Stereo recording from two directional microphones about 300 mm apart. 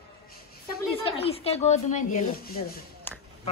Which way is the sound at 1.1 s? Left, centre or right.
Centre.